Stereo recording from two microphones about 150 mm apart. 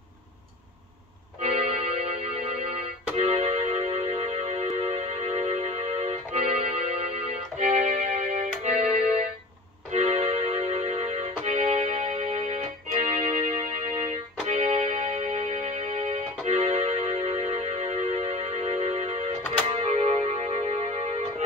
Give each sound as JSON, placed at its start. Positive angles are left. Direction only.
{"t": 1.4, "sound": "music", "side_deg": -45}
{"t": 9.8, "sound": "music", "side_deg": -45}
{"t": 13.2, "sound": "music", "side_deg": -40}